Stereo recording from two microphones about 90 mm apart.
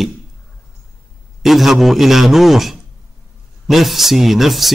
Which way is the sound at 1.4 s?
5° right (ahead or behind).